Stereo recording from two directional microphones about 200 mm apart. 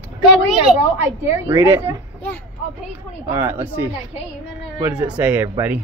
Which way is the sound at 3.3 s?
10° right (ahead or behind).